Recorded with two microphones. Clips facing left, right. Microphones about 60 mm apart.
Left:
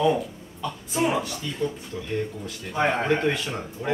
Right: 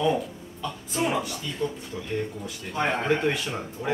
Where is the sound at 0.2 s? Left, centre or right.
Centre.